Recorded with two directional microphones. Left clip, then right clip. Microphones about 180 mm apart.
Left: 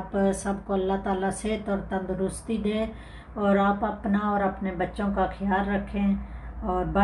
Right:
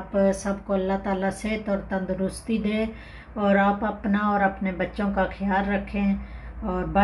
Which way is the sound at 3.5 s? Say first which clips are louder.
Right 2 dB; 30° right (ahead or behind).